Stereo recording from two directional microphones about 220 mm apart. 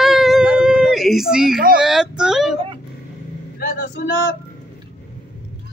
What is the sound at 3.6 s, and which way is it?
Speech, 50° left (ahead or behind).